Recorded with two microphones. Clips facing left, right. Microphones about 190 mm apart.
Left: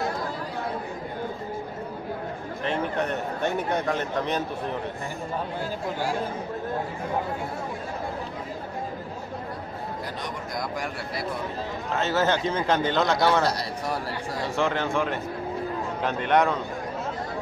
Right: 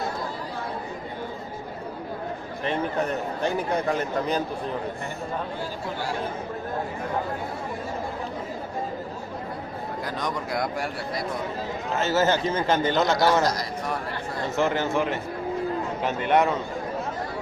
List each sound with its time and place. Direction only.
2.6 s a man's voice: centre (ahead or behind)
10.2 s speech: 80° right
11.9 s a man's voice: 5° right (ahead or behind)
13.5 s a man's voice: 30° left (ahead or behind)
14.6 s speech: 5° right (ahead or behind)